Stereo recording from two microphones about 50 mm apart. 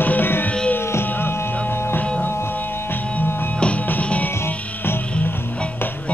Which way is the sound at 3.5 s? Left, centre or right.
Left.